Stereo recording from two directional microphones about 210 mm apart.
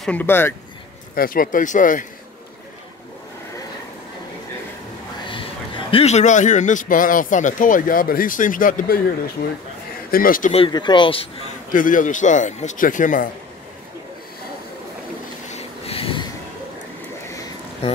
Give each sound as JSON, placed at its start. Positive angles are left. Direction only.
{"t": 0.0, "sound": "speech", "side_deg": 10}
{"t": 1.1, "sound": "a man's voice", "side_deg": 45}
{"t": 5.3, "sound": "a man's voice", "side_deg": 25}
{"t": 10.5, "sound": "speech", "side_deg": 25}
{"t": 11.7, "sound": "a man's voice", "side_deg": 40}
{"t": 15.5, "sound": "a sound", "side_deg": 25}